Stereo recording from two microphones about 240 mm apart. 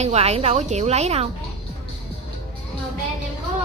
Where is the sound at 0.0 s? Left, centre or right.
Right.